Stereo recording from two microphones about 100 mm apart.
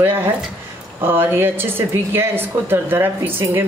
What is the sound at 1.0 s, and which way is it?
A woman's voice, 20° right (ahead or behind).